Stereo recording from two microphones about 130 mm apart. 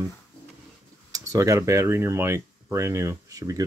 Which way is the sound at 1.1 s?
25° right (ahead or behind).